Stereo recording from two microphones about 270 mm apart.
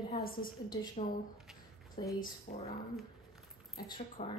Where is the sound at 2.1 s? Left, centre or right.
Left.